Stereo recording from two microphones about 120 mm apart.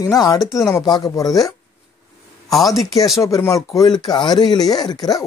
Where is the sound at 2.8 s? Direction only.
Centre (ahead or behind).